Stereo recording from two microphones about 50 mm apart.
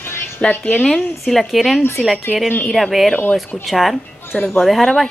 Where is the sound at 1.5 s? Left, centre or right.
Centre.